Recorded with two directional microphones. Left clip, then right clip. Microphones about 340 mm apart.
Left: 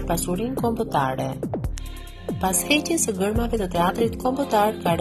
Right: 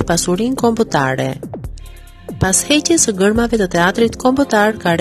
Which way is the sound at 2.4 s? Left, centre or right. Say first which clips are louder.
Right 7 dB; right.